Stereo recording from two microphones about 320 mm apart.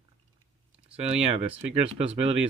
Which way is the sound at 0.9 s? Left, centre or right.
Centre.